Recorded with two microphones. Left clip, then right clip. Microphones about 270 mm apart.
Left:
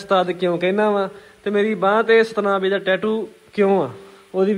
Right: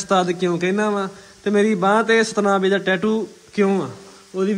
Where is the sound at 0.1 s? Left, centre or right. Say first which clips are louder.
Left 1 dB; centre.